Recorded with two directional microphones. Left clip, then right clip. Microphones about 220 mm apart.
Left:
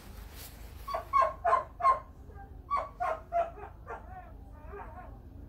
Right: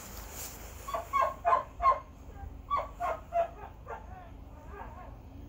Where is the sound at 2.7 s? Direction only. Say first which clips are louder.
Even; 50° left (ahead or behind).